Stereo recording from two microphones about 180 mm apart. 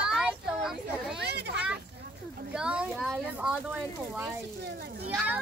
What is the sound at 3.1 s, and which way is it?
Speech, 10° right (ahead or behind).